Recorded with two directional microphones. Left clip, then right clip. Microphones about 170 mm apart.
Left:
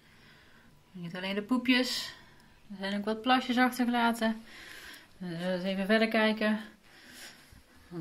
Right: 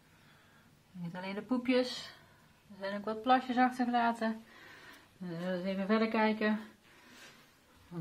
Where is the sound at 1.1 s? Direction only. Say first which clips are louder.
Left 5 dB; 15° left (ahead or behind).